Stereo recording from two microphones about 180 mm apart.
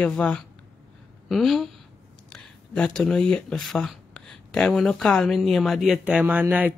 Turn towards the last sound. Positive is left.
turn(degrees=-10)  # may be behind; listen again after turning